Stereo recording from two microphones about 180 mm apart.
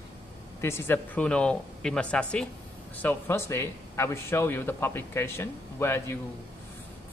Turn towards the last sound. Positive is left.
turn(degrees=15)  # may be behind; listen again after turning